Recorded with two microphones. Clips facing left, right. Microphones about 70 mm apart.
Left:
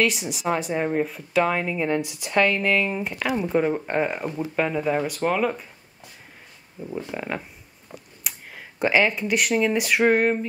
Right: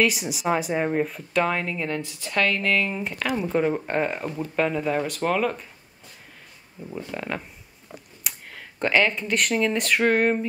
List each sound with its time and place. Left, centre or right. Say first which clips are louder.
0.0 s speech: even; centre
7.0 s speech: left 1 dB; centre
8.2 s speech: even; centre